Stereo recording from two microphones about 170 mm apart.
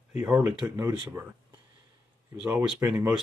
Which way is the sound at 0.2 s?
10° right (ahead or behind).